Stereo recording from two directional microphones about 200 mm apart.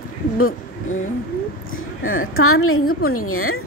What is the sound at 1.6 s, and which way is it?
A woman's voice, 85° left.